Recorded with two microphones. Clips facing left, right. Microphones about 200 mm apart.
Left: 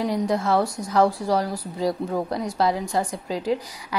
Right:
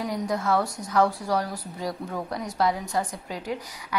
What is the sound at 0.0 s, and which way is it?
A woman's voice, 30° left (ahead or behind).